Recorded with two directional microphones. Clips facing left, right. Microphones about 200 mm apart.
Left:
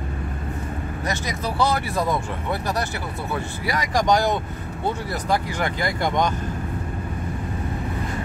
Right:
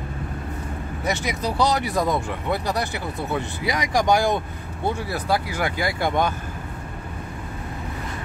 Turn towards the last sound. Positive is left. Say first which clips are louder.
# even
turn(degrees=-5)  # may be behind; listen again after turning